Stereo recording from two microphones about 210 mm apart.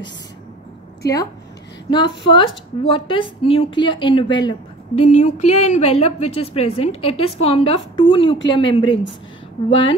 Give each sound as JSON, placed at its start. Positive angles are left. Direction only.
{"t": 1.9, "sound": "a woman's voice", "side_deg": 20}